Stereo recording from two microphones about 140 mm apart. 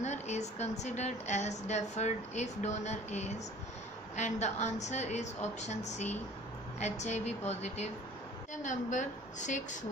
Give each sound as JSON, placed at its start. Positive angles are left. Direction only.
{"t": 0.0, "sound": "a woman's voice", "side_deg": 55}
{"t": 8.6, "sound": "a woman's voice", "side_deg": 65}